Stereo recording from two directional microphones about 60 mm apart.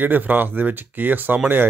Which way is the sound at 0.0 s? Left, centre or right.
Right.